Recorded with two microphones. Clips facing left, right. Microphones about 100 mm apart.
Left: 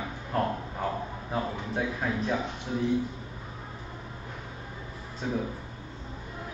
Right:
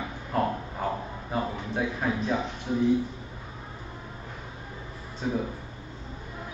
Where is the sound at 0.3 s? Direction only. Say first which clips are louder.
Right 2 dB; 5° right (ahead or behind).